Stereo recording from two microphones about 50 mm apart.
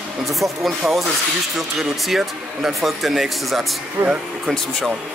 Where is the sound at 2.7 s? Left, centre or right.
Centre.